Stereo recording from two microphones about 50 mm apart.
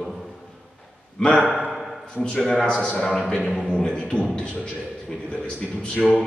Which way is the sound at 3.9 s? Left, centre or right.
Left.